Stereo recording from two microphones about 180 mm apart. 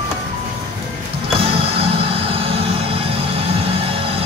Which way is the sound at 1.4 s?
30° right (ahead or behind).